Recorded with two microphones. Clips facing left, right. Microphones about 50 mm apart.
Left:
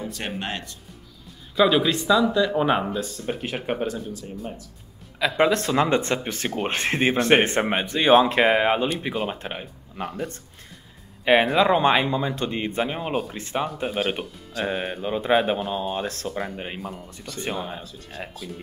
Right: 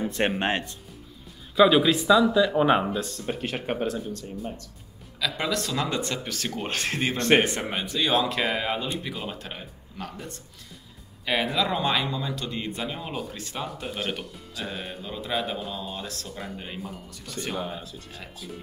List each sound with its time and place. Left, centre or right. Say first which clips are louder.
0.0 s music: right 6 dB; right
0.4 s speech: right 4 dB; right
1.5 s speech: right 1 dB; centre
5.2 s speech: left 8 dB; left
7.2 s speech: left 1 dB; centre
7.4 s speech: left 6 dB; left
11.5 s speech: left 7 dB; left
13.8 s speech: left 5 dB; centre
14.6 s speech: left 8 dB; left
17.8 s speech: left 4 dB; centre